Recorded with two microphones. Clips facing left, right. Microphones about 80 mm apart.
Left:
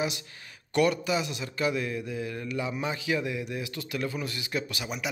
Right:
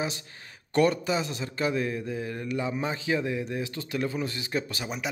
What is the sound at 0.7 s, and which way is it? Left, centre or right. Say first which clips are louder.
A man's voice: right 1 dB; right.